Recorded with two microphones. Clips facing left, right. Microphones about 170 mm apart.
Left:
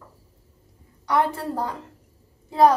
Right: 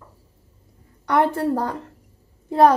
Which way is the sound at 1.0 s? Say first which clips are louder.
Right 4 dB; 60° right (ahead or behind).